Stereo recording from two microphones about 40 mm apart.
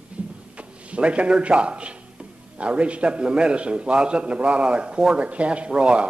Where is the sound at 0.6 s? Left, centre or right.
Right.